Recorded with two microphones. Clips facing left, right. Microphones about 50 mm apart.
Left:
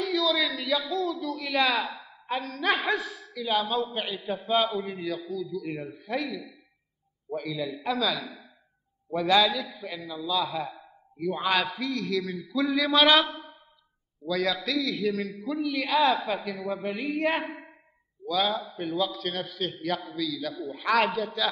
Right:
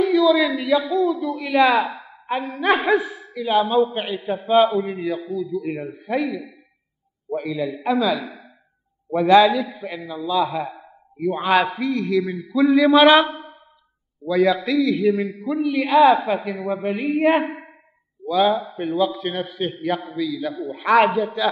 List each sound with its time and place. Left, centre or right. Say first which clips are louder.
0.0 s a man's voice: right 10 dB; centre
3.0 s speech: right 7 dB; right
3.5 s a man's voice: right 10 dB; centre
8.0 s a man's voice: right 7 dB; right
9.7 s a man's voice: right 6 dB; centre